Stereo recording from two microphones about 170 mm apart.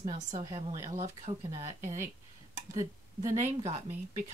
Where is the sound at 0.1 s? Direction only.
40° right (ahead or behind).